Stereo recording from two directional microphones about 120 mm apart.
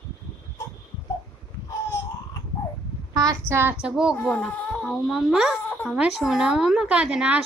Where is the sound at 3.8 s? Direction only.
5° right (ahead or behind).